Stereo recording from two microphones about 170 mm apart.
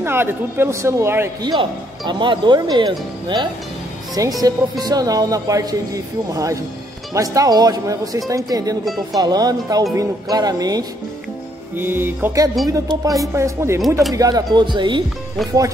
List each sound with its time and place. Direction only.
0.0 s speech: 15° right (ahead or behind)
1.5 s speech: 25° right (ahead or behind)